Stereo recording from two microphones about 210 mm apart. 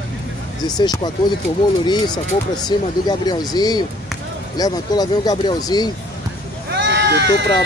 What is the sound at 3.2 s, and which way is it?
Speech, 20° left (ahead or behind).